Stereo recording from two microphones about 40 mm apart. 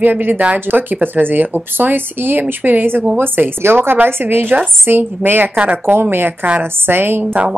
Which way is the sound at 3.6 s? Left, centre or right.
Right.